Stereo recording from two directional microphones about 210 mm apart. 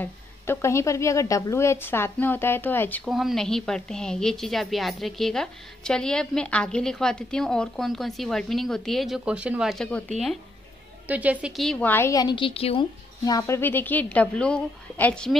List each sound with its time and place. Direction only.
0.0 s a woman's voice: 10° left (ahead or behind)
11.1 s a woman's voice: 5° right (ahead or behind); by 12.8 s 25° left (ahead or behind)
13.2 s a woman's voice: 15° left (ahead or behind)